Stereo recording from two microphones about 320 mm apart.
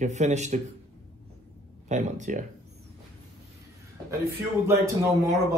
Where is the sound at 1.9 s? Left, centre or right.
Right.